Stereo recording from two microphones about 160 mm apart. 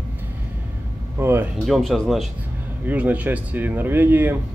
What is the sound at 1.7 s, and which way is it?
Speech, centre (ahead or behind).